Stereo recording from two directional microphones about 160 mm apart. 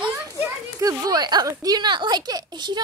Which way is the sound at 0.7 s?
25° right (ahead or behind).